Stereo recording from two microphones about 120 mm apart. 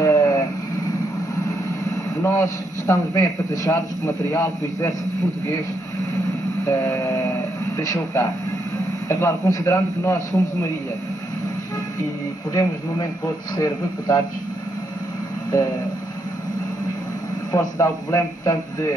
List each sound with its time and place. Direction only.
0.0 s vehicle: 30° left (ahead or behind)
2.2 s a man's voice: 20° left (ahead or behind)
6.6 s a man's voice: 20° left (ahead or behind)
13.6 s a man's voice: 30° left (ahead or behind)
17.5 s a man's voice: 30° left (ahead or behind)